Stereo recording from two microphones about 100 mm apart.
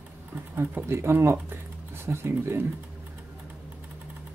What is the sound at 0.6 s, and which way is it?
Speech, 25° right (ahead or behind).